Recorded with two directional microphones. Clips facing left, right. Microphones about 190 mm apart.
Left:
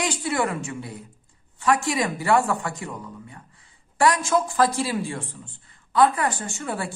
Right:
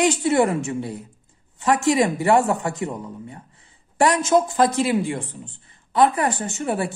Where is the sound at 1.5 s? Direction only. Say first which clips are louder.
Right 4 dB; 25° right (ahead or behind).